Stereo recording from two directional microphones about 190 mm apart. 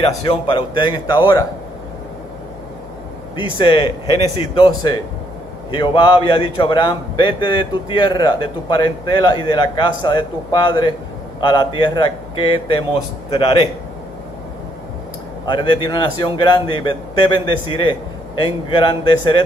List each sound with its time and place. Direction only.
0.0 s a man's voice: 25° left (ahead or behind)
3.3 s a man's voice: 25° left (ahead or behind)
15.4 s a man's voice: 25° left (ahead or behind)